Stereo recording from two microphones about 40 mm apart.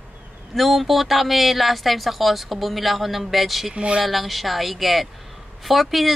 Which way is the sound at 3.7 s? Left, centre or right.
Right.